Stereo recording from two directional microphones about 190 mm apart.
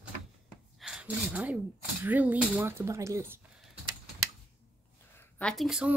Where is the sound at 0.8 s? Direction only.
5° right (ahead or behind).